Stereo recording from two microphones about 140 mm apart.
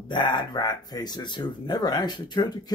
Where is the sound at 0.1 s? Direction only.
35° left (ahead or behind).